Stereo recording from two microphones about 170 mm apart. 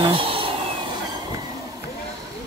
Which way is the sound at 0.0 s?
30° right (ahead or behind).